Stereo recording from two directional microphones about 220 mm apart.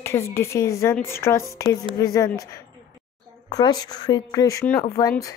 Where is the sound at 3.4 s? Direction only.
20° left (ahead or behind).